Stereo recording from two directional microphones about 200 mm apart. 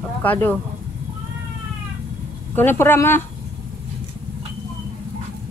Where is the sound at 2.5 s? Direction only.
10° left (ahead or behind).